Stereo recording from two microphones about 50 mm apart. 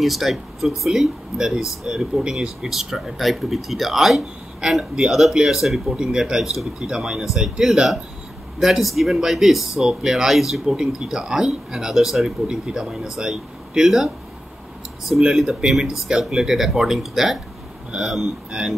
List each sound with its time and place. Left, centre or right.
0.0 s speech: centre
4.9 s speech: centre
18.2 s speech: centre